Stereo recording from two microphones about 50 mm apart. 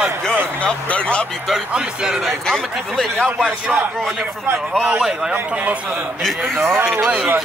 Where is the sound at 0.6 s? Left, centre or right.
Left.